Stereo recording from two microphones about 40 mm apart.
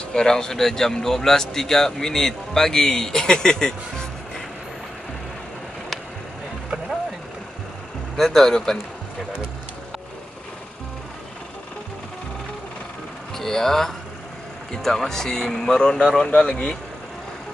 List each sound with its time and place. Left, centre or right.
0.1 s speech: centre
8.2 s speech: centre
13.4 s speech: centre